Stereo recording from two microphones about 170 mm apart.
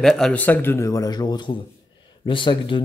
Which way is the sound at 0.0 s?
Centre (ahead or behind).